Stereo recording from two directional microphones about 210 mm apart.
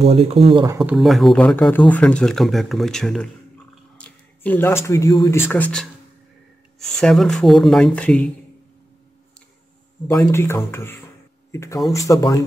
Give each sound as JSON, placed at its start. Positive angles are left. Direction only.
{"t": 0.0, "sound": "speech", "side_deg": -30}
{"t": 0.7, "sound": "speech", "side_deg": 0}
{"t": 10.0, "sound": "speech", "side_deg": 15}